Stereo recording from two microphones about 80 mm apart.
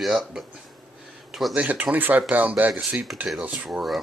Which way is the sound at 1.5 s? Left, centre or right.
Centre.